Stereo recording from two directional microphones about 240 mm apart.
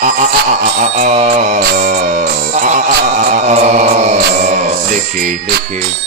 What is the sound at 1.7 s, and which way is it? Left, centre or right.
Music, right.